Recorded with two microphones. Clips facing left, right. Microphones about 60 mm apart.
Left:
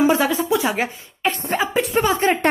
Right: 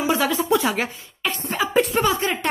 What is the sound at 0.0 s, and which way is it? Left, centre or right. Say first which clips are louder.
A woman's voice: left 4 dB; left.